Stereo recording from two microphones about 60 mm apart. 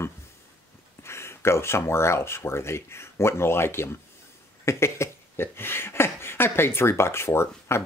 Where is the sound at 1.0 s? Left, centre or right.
Left.